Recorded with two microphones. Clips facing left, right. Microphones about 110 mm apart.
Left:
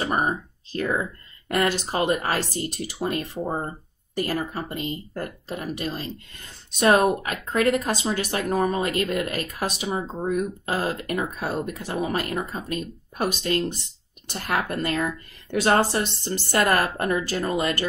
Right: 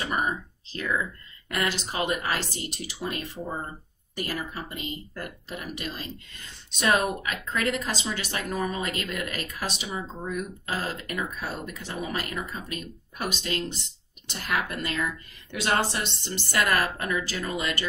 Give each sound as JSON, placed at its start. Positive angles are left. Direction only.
{"t": 0.0, "sound": "a woman's voice", "side_deg": 40}